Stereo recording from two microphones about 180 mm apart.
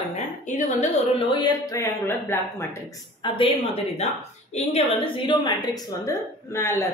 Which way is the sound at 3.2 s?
30° left (ahead or behind).